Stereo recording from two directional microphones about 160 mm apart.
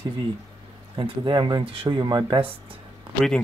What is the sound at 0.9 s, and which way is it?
Speech, 30° right (ahead or behind).